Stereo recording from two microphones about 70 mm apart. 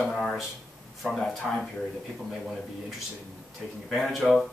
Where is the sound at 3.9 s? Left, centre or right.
Centre.